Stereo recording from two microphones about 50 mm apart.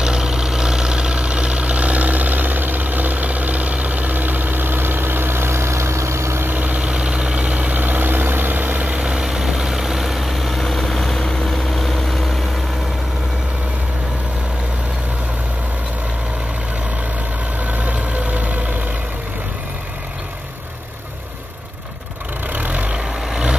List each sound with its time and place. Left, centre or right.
0.0 s vehicle: centre; by 6.4 s right
6.4 s vehicle: right
8.9 s vehicle: centre
17.8 s vehicle: right
22.5 s vehicle: right